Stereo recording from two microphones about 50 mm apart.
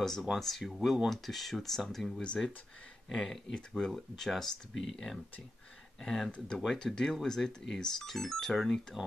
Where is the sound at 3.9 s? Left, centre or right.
Centre.